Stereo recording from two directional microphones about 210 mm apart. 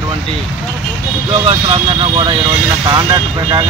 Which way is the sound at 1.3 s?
25° right (ahead or behind).